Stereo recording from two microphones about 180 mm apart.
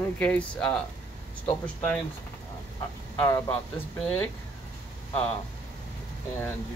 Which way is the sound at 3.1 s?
15° left (ahead or behind).